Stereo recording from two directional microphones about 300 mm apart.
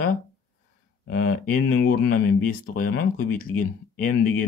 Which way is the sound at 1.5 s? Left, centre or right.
Left.